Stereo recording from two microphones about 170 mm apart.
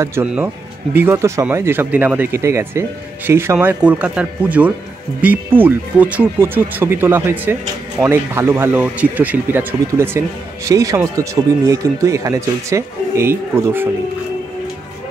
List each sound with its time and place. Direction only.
0.0 s speech: 15° right (ahead or behind)